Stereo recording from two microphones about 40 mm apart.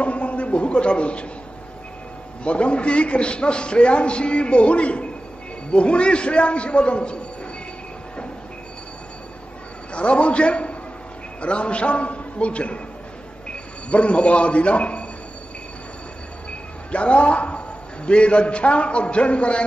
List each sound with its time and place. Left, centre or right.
0.0 s a sound: left
2.4 s a man's voice: left
9.9 s a man's voice: left
16.9 s a man's voice: left